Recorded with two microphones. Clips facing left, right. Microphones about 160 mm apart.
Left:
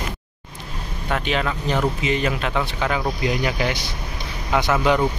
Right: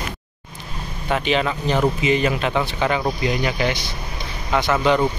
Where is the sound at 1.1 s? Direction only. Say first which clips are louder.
Right 3 dB; centre (ahead or behind).